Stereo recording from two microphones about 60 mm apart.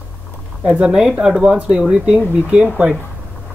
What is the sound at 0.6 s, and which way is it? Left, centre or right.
Speech, centre.